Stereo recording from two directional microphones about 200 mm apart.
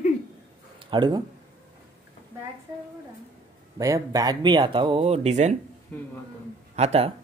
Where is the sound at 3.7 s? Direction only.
15° right (ahead or behind); by 5.6 s 35° right (ahead or behind).